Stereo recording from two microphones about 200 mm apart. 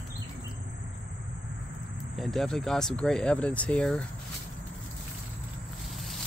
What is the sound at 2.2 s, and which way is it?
Speech, centre (ahead or behind).